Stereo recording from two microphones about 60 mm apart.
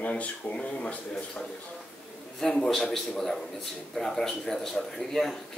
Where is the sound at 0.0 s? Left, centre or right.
Left.